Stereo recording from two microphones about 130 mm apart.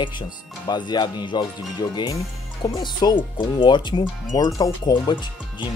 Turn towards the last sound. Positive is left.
turn(degrees=35)  # may be behind; listen again after turning